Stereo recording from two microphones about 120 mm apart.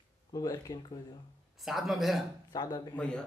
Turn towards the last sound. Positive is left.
turn(degrees=10)  # may be behind; listen again after turning